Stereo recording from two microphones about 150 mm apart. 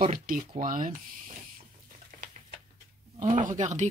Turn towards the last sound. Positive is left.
turn(degrees=-55)  # may be behind; listen again after turning